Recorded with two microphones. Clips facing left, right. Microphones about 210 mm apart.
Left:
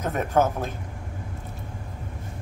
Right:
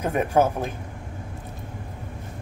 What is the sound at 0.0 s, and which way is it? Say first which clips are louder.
Speech: right 2 dB; 10° right (ahead or behind).